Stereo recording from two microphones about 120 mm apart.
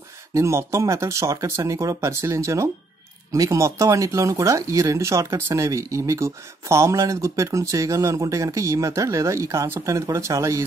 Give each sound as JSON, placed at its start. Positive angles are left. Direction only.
{"t": 0.3, "sound": "speech", "side_deg": -25}